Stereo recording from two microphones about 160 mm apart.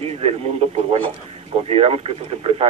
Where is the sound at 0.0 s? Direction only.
40° right (ahead or behind).